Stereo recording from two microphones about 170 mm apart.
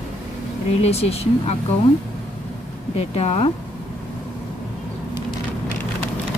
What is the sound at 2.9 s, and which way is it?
Speech, 40° left (ahead or behind).